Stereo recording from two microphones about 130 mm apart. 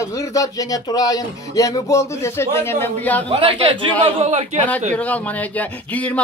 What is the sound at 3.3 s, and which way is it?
Speech, 40° right (ahead or behind).